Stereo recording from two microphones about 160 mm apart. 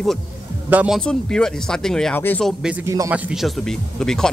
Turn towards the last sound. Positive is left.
turn(degrees=5)  # may be behind; listen again after turning